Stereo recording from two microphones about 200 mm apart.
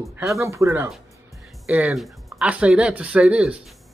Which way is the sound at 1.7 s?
5° right (ahead or behind).